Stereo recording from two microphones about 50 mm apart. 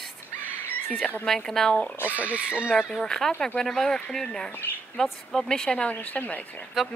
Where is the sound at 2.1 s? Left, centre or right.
Right.